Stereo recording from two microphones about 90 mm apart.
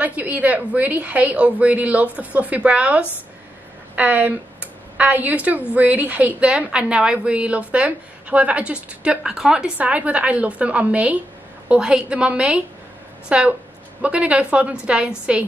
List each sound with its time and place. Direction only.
0.0 s a woman's voice: 15° right (ahead or behind)